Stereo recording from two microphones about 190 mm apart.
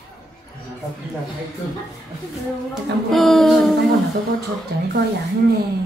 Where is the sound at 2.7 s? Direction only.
Centre (ahead or behind).